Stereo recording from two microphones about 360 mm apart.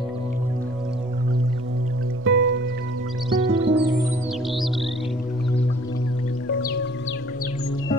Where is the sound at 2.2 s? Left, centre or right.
Right.